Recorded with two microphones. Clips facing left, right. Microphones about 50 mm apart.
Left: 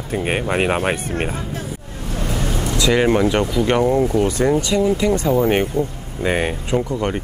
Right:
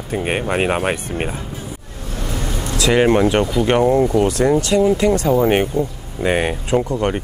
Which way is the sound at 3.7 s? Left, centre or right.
Centre.